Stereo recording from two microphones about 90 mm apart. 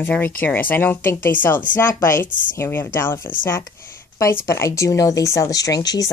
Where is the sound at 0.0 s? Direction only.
20° left (ahead or behind).